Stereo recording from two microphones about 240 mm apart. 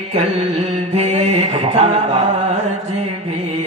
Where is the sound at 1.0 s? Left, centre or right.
Right.